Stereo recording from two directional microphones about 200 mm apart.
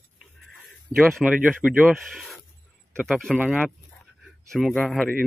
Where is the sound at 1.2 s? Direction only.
5° right (ahead or behind).